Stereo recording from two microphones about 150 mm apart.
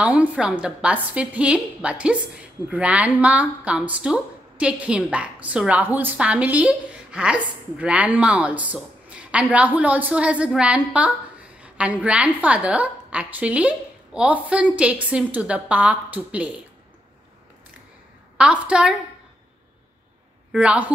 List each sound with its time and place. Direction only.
0.0 s a woman's voice: 10° right (ahead or behind)
18.4 s a woman's voice: 5° right (ahead or behind)
20.5 s a woman's voice: 10° right (ahead or behind)